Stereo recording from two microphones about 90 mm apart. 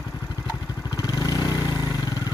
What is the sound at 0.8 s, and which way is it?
Vehicle, 50° left (ahead or behind).